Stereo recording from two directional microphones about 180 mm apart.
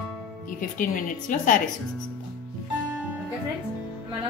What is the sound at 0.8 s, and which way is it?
Speech, 50° left (ahead or behind).